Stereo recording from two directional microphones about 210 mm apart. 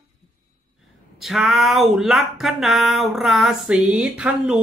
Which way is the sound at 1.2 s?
Centre (ahead or behind).